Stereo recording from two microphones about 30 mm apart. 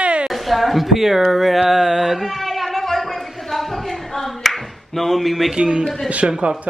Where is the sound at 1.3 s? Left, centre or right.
Centre.